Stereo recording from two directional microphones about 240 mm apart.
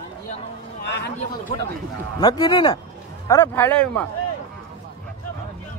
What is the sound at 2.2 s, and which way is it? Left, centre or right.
A man's voice, centre.